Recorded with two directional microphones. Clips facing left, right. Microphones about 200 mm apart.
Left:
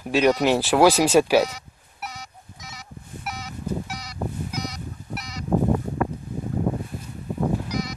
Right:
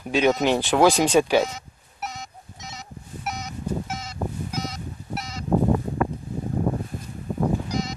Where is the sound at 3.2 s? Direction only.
20° right (ahead or behind).